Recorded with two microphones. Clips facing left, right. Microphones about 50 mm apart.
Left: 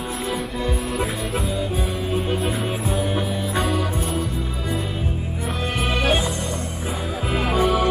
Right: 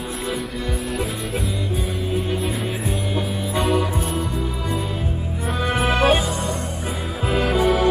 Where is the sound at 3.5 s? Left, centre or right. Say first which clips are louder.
Right 4 dB; centre.